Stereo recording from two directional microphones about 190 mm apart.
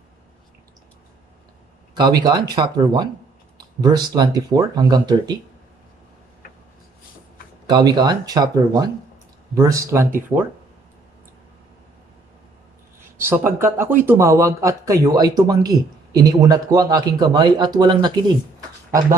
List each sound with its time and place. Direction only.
2.0 s speech: 20° right (ahead or behind)
7.6 s speech: 20° right (ahead or behind)
13.2 s speech: 10° right (ahead or behind)